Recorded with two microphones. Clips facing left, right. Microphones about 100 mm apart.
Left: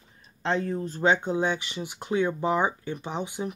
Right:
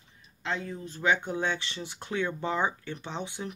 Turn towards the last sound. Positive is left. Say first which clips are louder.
# left 5 dB
turn(degrees=20)  # may be behind; listen again after turning